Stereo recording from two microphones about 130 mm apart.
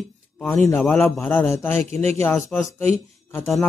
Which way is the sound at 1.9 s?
55° right (ahead or behind).